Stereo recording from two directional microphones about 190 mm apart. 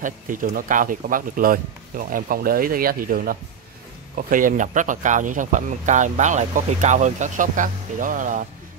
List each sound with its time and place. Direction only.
0.0 s speech: 45° right (ahead or behind)